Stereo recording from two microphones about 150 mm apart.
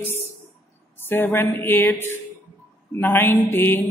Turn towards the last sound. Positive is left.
turn(degrees=15)  # may be behind; listen again after turning